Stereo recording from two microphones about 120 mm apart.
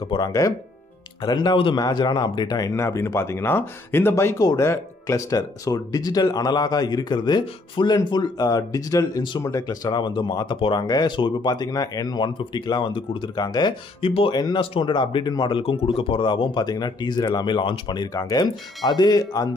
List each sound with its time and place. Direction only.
0.3 s speech: 30° left (ahead or behind)
14.6 s speech: 45° left (ahead or behind)
15.6 s speech: 50° left (ahead or behind); by 19.5 s 35° left (ahead or behind)